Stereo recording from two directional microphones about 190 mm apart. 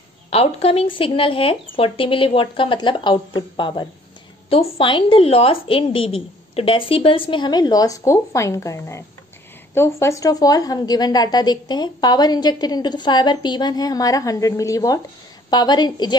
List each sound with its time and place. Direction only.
0.3 s a woman's voice: 30° left (ahead or behind)